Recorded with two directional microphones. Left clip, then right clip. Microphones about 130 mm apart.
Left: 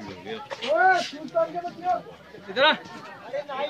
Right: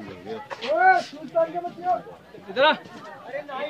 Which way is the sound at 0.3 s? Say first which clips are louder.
Even; 50° right (ahead or behind).